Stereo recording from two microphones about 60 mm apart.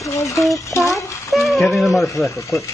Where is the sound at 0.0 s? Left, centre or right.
Left.